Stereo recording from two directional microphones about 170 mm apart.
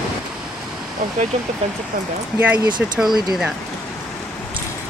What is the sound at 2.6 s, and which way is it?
Speech, 25° right (ahead or behind).